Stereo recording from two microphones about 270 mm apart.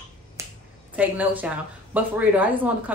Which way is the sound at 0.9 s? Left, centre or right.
Centre.